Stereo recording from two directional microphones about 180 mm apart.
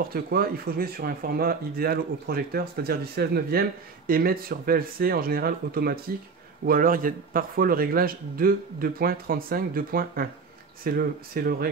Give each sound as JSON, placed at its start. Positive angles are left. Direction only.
{"t": 0.1, "sound": "speech", "side_deg": -55}